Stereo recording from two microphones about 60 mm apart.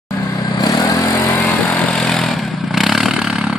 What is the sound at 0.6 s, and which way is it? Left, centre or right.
Vehicle, left.